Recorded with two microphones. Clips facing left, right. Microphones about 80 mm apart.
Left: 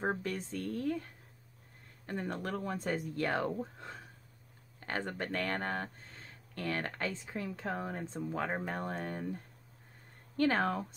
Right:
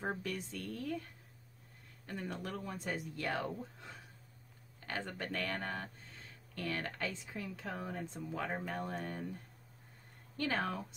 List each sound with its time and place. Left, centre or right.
0.0 s speech: left
2.0 s speech: left